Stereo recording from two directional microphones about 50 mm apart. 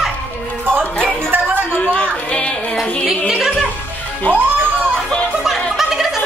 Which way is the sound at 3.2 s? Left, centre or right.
Centre.